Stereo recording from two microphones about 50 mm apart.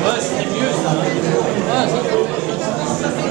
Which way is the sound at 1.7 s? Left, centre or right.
Centre.